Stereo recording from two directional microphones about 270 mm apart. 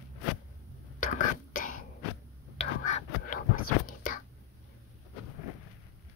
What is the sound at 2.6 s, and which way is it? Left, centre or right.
Whispering, left.